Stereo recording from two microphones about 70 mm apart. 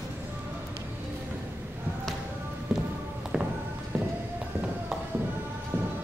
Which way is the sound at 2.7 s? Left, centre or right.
Centre.